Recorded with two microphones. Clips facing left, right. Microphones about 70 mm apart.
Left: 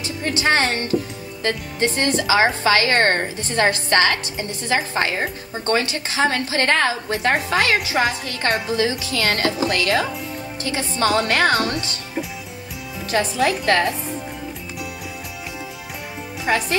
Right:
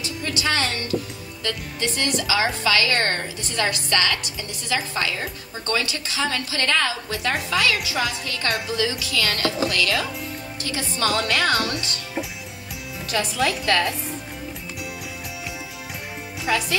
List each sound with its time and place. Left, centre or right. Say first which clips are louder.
0.0 s a woman's voice: left 4 dB; left
13.1 s a woman's voice: left 4 dB; left
16.4 s a woman's voice: left 3 dB; left